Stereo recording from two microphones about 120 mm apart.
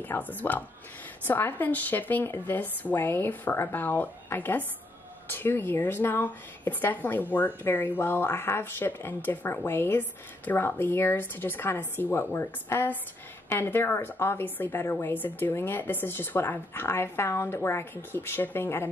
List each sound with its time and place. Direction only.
0.0 s a woman's voice: 15° left (ahead or behind)